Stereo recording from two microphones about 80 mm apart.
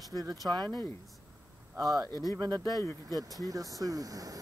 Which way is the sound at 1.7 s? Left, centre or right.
Right.